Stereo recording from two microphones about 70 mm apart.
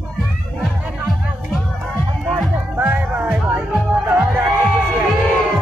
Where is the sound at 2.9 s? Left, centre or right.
Centre.